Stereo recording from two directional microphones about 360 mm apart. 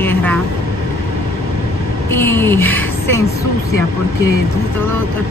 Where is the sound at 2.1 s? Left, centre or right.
Centre.